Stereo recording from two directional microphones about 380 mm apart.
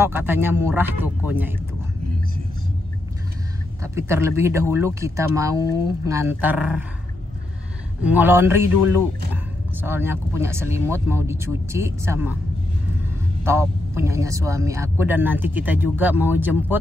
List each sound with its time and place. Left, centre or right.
0.0 s a man's voice: centre
3.8 s a man's voice: centre
8.0 s a man's voice: centre
13.4 s a man's voice: centre